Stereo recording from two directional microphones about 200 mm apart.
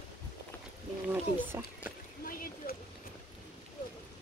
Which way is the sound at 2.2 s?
45° left (ahead or behind).